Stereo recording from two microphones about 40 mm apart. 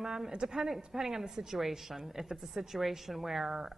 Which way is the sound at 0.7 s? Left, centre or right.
Centre.